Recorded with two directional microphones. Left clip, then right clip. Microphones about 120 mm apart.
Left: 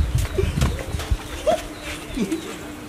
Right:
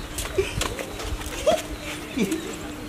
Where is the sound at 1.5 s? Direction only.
10° right (ahead or behind).